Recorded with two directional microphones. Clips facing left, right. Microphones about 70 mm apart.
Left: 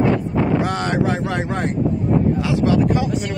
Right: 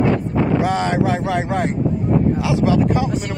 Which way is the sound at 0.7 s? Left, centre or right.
Centre.